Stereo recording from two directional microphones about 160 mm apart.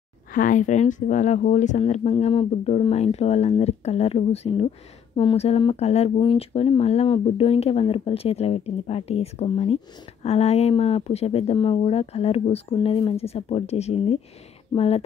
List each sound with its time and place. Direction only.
0.3 s speech: 55° left (ahead or behind); by 15.0 s 40° left (ahead or behind)